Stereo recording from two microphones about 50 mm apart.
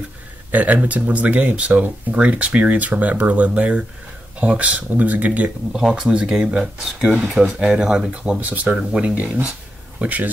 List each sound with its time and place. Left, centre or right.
0.5 s speech: right
5.9 s speech: centre
8.1 s speech: right
9.2 s speech: centre
9.9 s speech: right